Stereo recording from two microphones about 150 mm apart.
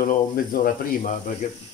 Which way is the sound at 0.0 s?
65° left (ahead or behind).